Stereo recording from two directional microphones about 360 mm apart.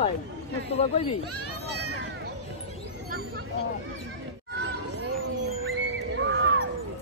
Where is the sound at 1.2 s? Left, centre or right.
Right.